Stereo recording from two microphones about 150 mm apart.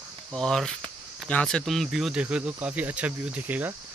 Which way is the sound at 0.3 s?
5° left (ahead or behind).